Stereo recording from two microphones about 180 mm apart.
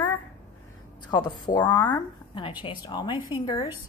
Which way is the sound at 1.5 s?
10° left (ahead or behind).